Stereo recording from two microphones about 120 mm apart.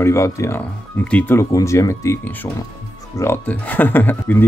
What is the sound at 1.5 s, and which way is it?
Speech, 25° left (ahead or behind).